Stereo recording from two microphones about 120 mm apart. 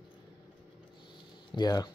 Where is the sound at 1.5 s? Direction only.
35° left (ahead or behind).